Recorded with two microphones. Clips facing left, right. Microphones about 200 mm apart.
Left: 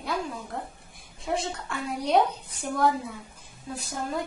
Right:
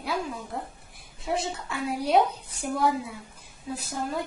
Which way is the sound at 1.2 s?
Centre (ahead or behind).